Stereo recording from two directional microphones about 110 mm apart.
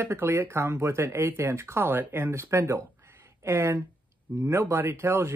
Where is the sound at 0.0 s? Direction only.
20° right (ahead or behind).